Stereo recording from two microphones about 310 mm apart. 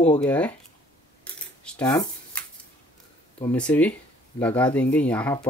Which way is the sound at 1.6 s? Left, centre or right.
Centre.